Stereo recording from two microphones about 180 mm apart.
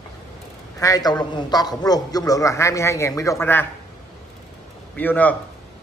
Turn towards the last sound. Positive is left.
turn(degrees=10)  # may be behind; listen again after turning